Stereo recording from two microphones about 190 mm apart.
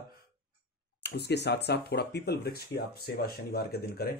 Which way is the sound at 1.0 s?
60° left (ahead or behind).